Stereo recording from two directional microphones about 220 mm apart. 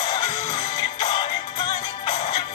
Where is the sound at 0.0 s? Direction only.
20° left (ahead or behind).